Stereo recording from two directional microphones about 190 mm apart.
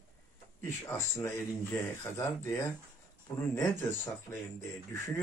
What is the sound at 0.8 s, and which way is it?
Speech, 15° left (ahead or behind).